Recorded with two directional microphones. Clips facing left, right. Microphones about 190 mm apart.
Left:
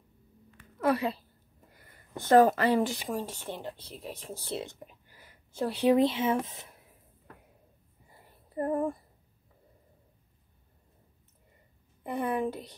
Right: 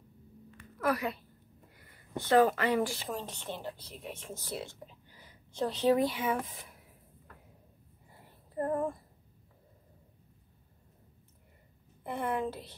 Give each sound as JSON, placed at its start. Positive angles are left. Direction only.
{"t": 0.7, "sound": "a woman's voice", "side_deg": 30}
{"t": 2.1, "sound": "speech", "side_deg": 45}
{"t": 2.8, "sound": "speech", "side_deg": 15}
{"t": 3.8, "sound": "speech", "side_deg": 35}
{"t": 4.8, "sound": "speech", "side_deg": 10}
{"t": 8.5, "sound": "speech", "side_deg": 10}
{"t": 12.0, "sound": "speech", "side_deg": 15}